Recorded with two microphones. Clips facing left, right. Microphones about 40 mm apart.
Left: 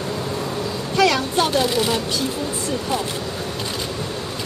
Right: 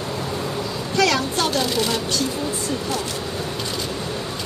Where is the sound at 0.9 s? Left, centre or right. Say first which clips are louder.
Left 2 dB; centre.